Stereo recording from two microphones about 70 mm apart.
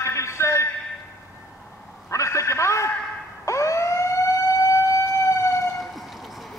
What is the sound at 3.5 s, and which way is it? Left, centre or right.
Emergency vehicle, left.